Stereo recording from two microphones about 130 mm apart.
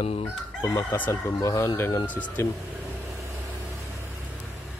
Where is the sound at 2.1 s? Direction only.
10° left (ahead or behind).